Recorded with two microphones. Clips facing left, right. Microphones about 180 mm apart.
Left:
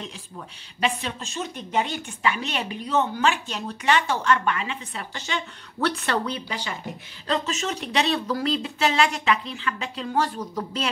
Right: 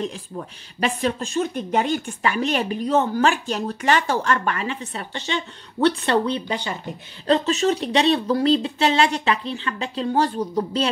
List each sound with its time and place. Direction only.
0.7 s speech: 45° right (ahead or behind)
5.1 s speech: 30° right (ahead or behind)